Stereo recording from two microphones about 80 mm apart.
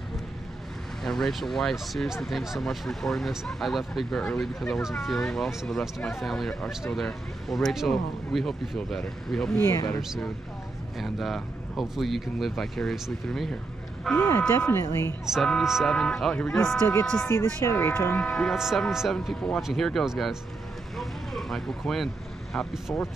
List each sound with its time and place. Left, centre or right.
1.0 s speech: centre
9.6 s speech: left
9.9 s speech: centre
14.1 s speech: left
15.2 s speech: centre
17.3 s speech: left
18.2 s speech: centre
18.6 s speech: centre
21.0 s vehicle: centre